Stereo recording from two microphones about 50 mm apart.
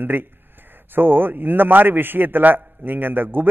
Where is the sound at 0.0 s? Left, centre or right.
Right.